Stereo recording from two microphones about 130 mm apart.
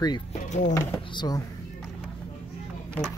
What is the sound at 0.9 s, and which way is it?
Speech, 35° left (ahead or behind).